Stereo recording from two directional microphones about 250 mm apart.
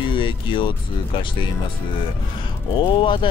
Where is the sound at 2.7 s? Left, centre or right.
Centre.